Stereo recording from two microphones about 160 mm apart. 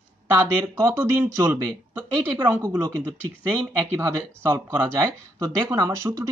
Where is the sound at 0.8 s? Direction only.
10° right (ahead or behind).